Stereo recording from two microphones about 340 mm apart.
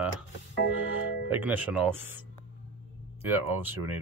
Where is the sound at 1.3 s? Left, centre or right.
Centre.